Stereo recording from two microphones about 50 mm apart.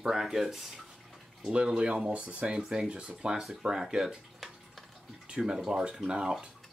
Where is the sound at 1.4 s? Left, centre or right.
Centre.